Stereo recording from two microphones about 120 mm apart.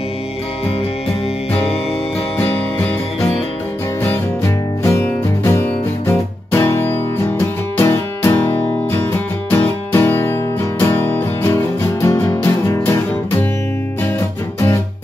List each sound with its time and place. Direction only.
4.8 s music: 20° left (ahead or behind)